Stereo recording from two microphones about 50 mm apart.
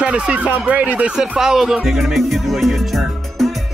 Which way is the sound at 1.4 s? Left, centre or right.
Centre.